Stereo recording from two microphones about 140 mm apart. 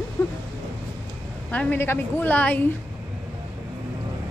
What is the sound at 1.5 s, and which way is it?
A woman's voice, 10° left (ahead or behind).